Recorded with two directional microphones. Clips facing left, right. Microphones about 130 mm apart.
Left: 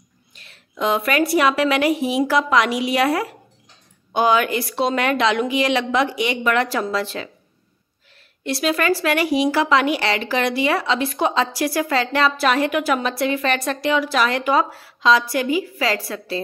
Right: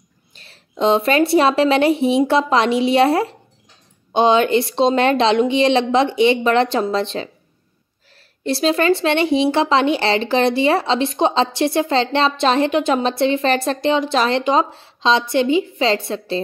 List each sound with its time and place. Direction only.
0.3 s speech: 30° right (ahead or behind)
8.5 s speech: 30° right (ahead or behind)